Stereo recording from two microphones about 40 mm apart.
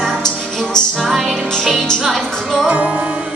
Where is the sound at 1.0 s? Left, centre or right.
Centre.